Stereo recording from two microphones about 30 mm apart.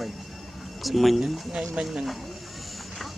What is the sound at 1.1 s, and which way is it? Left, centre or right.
Speech, centre.